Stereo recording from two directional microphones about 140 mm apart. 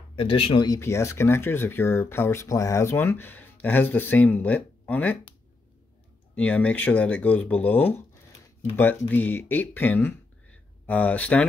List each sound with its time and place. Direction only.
0.1 s speech: 40° left (ahead or behind)
0.7 s speech: 20° left (ahead or behind)
6.3 s speech: 10° left (ahead or behind)